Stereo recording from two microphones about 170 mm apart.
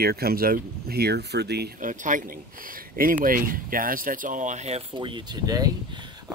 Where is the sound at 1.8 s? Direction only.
50° right (ahead or behind).